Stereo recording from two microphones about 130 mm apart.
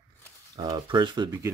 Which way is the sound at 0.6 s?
30° right (ahead or behind).